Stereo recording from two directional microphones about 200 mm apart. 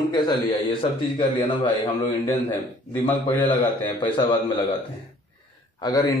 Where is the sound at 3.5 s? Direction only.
25° left (ahead or behind).